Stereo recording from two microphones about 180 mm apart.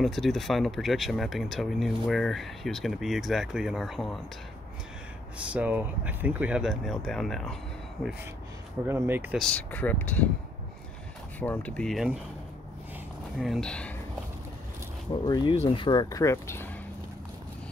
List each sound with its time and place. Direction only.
0.0 s speech: centre (ahead or behind)
5.5 s speech: 10° right (ahead or behind)
8.8 s speech: 15° right (ahead or behind)
9.4 s speech: 5° left (ahead or behind)
11.3 s speech: 10° left (ahead or behind)
13.4 s speech: centre (ahead or behind)
15.2 s speech: 25° left (ahead or behind)